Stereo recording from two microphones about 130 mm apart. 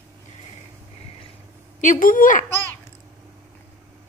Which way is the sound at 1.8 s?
85° left.